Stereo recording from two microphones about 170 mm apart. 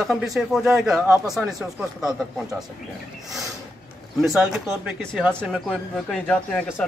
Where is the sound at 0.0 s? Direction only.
Centre (ahead or behind).